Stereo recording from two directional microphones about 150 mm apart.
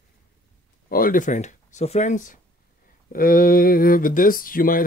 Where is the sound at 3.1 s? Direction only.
70° left (ahead or behind).